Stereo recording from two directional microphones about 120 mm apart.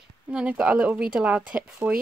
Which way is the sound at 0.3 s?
10° right (ahead or behind).